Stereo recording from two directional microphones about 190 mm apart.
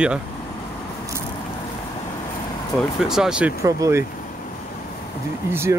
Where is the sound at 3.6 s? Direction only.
15° right (ahead or behind).